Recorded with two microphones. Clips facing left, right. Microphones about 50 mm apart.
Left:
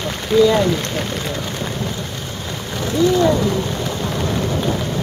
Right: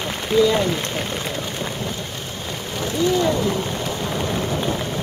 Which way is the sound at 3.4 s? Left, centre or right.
Centre.